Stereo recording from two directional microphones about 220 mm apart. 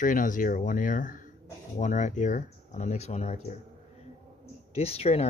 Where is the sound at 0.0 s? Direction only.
35° left (ahead or behind).